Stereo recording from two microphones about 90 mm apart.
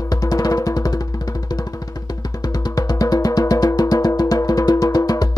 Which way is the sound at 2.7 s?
45° left (ahead or behind).